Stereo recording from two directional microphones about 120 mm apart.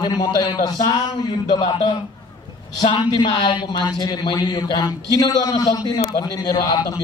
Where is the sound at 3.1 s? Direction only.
40° left (ahead or behind).